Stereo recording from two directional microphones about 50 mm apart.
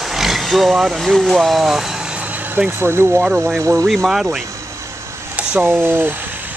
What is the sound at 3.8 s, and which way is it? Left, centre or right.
Speech, centre.